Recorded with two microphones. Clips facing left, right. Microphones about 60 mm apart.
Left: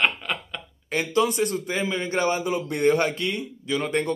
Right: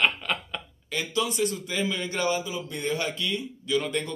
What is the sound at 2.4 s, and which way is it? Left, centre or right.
Speech, left.